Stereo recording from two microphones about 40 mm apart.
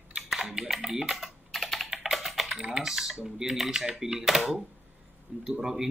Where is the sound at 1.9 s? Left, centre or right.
Centre.